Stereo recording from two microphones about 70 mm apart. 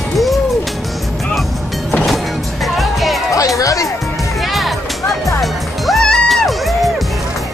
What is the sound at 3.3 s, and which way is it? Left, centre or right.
Music, left.